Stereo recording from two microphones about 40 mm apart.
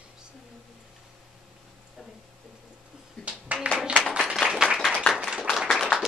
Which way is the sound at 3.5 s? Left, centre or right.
Right.